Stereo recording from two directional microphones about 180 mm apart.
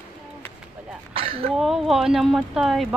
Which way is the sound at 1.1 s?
30° right (ahead or behind).